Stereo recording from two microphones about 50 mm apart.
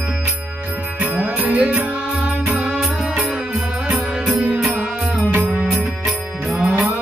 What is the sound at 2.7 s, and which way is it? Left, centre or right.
Music, centre.